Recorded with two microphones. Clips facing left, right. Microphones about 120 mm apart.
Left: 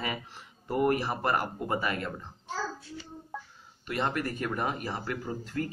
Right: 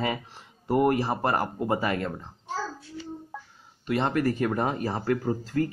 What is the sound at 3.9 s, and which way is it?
Speech, 30° right (ahead or behind).